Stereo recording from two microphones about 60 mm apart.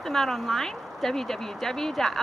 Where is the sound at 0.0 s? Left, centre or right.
Centre.